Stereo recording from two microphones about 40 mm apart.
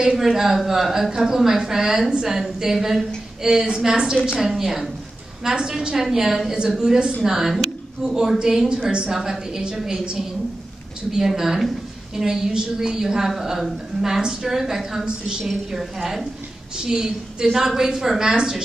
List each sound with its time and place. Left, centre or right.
0.1 s a woman's voice: centre
3.6 s a woman's voice: centre
4.4 s a woman's voice: centre
11.1 s a woman's voice: centre
16.7 s a woman's voice: centre